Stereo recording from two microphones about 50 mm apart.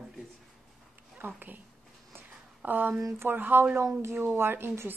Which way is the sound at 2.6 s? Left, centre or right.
Right.